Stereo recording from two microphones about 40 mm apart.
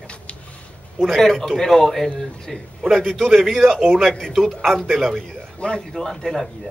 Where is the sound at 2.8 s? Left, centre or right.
Centre.